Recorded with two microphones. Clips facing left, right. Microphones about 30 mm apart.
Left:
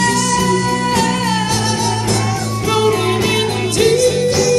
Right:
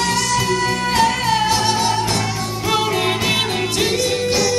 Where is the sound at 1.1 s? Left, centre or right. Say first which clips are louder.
Even; centre.